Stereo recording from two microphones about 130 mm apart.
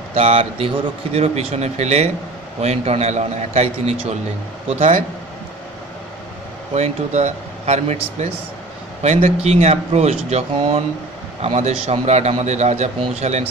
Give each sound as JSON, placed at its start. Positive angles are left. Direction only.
{"t": 0.1, "sound": "a man's voice", "side_deg": -55}
{"t": 6.7, "sound": "a man's voice", "side_deg": -60}